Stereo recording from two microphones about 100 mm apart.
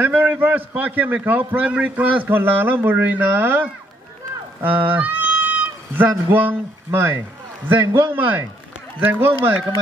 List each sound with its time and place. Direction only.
0.0 s a man's voice: 20° right (ahead or behind)